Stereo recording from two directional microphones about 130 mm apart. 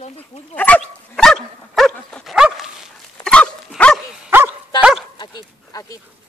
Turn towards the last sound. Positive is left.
turn(degrees=25)  # may be behind; listen again after turning